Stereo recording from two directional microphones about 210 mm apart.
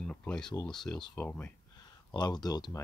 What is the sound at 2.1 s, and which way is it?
Speech, 20° left (ahead or behind).